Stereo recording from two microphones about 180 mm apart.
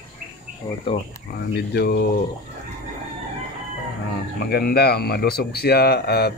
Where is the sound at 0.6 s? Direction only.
30° left (ahead or behind).